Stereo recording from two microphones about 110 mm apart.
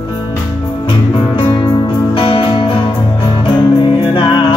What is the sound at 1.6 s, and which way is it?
Music, 50° left (ahead or behind).